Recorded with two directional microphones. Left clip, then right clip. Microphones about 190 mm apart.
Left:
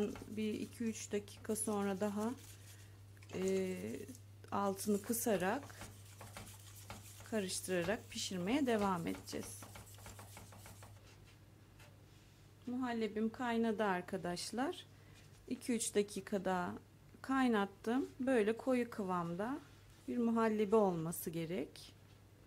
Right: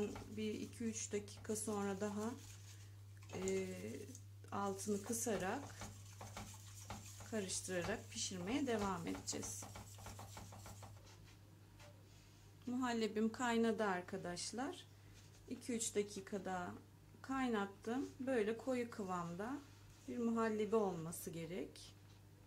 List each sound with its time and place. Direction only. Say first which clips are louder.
0.4 s speech: left 3 dB; 40° left (ahead or behind)
3.4 s speech: left 5 dB; 40° left (ahead or behind)
7.2 s speech: left 5 dB; 40° left (ahead or behind)
12.7 s a woman's voice: left 1 dB; 15° left (ahead or behind); by 21.8 s 40° left (ahead or behind)